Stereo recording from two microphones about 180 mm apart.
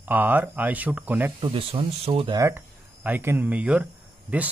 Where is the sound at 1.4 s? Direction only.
30° right (ahead or behind).